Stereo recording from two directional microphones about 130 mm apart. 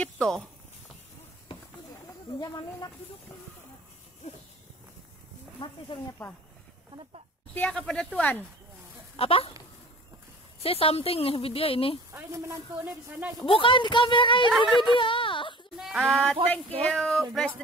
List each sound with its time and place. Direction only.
0.0 s speech: 5° left (ahead or behind)
2.3 s a woman's voice: 35° left (ahead or behind)
5.9 s a woman's voice: 40° left (ahead or behind)
7.5 s speech: 10° left (ahead or behind)
9.1 s speech: 45° left (ahead or behind)
10.6 s a woman's voice: 50° left (ahead or behind)
12.1 s speech: 25° right (ahead or behind)
13.4 s a woman's voice: 40° left (ahead or behind)
15.8 s speech: centre (ahead or behind)